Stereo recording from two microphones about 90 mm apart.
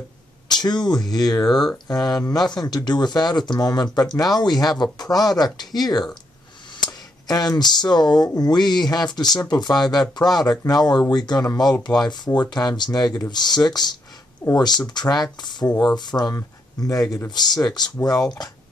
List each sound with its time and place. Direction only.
0.5 s speech: 55° left (ahead or behind)
16.3 s speech: 40° left (ahead or behind)
17.3 s speech: 50° left (ahead or behind)
18.1 s speech: 5° left (ahead or behind)